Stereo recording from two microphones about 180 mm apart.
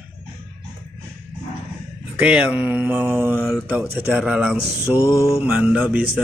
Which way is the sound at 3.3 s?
Centre (ahead or behind).